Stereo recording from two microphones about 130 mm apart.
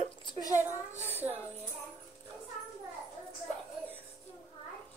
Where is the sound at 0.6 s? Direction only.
15° right (ahead or behind).